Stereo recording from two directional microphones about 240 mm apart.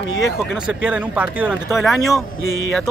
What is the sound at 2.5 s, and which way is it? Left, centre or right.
Music, left.